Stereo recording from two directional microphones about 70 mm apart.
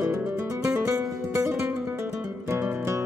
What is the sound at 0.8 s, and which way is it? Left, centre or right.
Music, right.